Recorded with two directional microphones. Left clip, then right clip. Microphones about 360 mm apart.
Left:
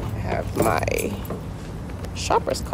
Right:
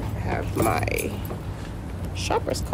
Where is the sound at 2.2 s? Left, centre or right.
Centre.